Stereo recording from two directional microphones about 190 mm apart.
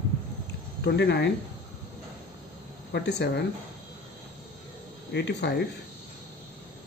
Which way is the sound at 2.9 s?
60° left (ahead or behind).